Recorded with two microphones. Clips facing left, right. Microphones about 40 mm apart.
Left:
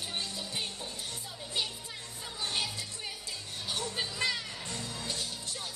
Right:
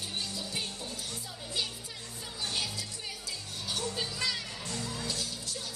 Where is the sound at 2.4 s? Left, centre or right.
Left.